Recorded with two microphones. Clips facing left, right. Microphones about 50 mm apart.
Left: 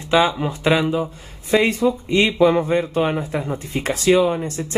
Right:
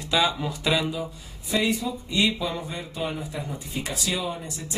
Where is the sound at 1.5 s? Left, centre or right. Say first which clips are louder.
Left 8 dB; left.